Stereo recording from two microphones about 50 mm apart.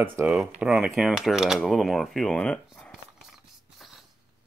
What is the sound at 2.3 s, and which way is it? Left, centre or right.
Speech, centre.